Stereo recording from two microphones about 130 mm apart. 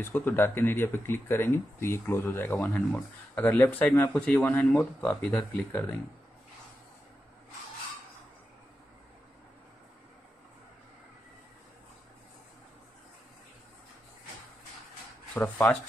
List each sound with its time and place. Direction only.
0.0 s speech: 15° left (ahead or behind)
15.3 s speech: 15° left (ahead or behind)